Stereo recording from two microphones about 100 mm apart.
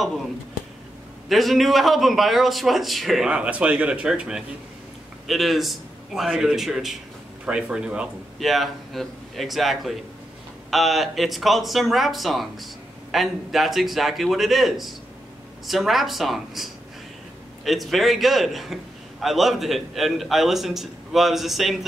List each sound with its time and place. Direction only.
1.3 s a man's voice: centre (ahead or behind)
3.3 s a man's voice: 10° right (ahead or behind)
8.4 s a man's voice: centre (ahead or behind)